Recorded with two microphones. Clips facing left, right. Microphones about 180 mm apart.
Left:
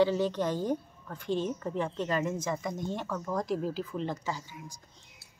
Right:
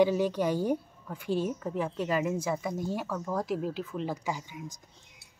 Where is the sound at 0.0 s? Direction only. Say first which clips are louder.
Right 1 dB; 10° right (ahead or behind).